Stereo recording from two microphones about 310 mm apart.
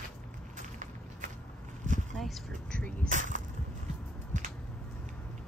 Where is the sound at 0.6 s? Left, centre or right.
Right.